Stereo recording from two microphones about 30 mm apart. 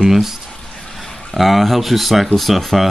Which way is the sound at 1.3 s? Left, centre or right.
Centre.